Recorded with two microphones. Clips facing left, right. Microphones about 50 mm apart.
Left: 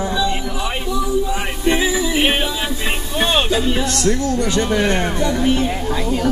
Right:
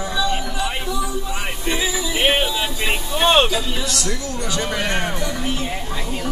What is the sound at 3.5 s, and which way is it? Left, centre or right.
Music, left.